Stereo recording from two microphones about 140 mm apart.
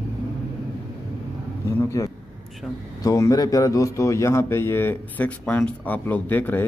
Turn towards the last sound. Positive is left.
turn(degrees=15)  # may be behind; listen again after turning